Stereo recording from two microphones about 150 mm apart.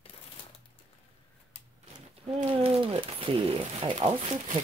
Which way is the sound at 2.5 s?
35° right (ahead or behind).